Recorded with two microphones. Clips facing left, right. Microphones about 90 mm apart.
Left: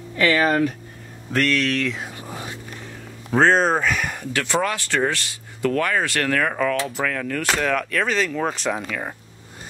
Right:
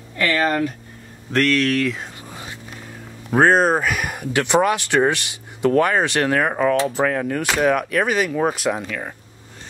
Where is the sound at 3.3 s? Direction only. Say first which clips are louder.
Right 2 dB; 10° right (ahead or behind).